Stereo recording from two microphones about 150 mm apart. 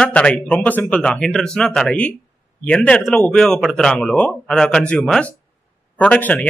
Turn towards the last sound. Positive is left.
turn(degrees=10)  # may be behind; listen again after turning